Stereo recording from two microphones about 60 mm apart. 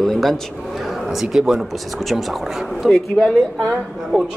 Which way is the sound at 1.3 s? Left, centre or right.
Centre.